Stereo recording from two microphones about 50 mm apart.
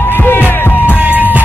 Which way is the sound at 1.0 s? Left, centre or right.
Right.